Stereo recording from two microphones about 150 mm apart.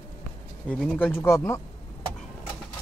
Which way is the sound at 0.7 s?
10° left (ahead or behind).